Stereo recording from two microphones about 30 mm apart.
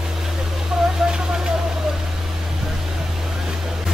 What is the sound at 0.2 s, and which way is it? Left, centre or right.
Vehicle, centre.